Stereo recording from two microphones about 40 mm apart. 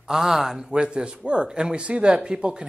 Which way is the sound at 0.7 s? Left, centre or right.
Right.